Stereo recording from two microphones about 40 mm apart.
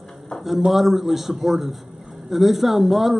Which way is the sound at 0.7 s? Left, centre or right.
Centre.